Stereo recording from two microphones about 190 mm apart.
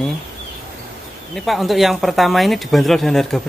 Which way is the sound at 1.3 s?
Centre (ahead or behind).